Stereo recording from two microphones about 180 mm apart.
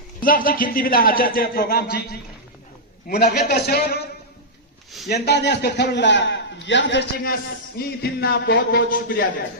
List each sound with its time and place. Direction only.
0.2 s a man's voice: 50° left (ahead or behind)
5.0 s a man's voice: 65° left (ahead or behind)